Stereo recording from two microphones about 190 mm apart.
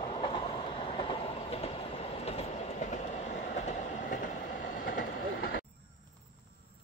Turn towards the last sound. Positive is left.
turn(degrees=50)  # may be behind; listen again after turning